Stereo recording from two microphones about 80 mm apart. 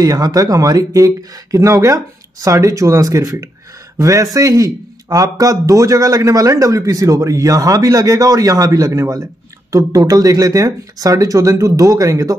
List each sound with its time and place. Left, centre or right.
0.0 s a man's voice: right